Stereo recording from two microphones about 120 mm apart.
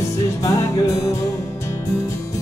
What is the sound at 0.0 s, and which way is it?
Music, 25° left (ahead or behind).